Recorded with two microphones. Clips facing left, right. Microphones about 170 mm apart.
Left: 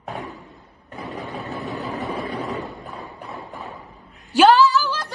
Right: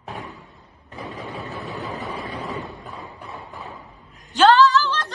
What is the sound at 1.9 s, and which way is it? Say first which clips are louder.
Vehicle: left 3 dB; 40° left (ahead or behind).